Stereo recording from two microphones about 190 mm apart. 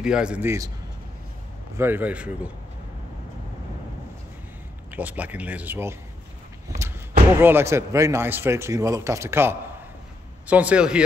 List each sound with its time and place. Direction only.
0.0 s speech: 5° right (ahead or behind)
1.8 s speech: 10° right (ahead or behind)
4.9 s speech: 10° right (ahead or behind)